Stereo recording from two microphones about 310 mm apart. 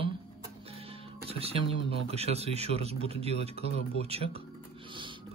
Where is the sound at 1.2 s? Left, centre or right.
Centre.